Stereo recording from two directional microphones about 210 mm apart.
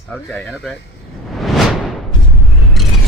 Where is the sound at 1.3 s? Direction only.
Centre (ahead or behind).